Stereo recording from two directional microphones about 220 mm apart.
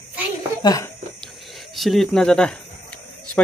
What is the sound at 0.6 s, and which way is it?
Speech, 15° left (ahead or behind).